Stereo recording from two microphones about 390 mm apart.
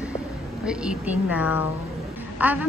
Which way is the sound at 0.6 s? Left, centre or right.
Centre.